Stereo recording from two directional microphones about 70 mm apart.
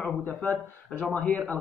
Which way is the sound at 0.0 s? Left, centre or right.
Left.